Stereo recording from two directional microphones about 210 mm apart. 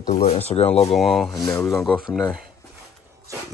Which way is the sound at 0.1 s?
30° left (ahead or behind).